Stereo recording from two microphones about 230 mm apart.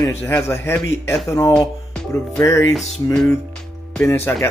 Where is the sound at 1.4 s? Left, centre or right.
Centre.